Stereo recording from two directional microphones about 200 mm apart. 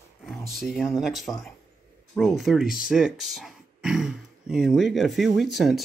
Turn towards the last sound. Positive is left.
turn(degrees=0)  # may be behind; listen again after turning